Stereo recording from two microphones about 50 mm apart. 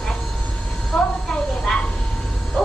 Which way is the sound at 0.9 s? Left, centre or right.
Centre.